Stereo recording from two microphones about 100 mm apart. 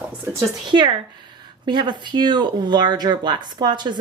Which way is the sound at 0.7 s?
55° right (ahead or behind).